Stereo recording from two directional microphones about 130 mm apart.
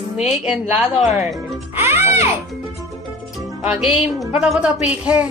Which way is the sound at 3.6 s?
5° right (ahead or behind).